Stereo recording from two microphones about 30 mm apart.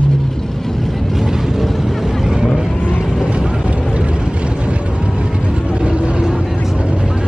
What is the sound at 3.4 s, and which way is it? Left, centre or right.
Vehicle, right.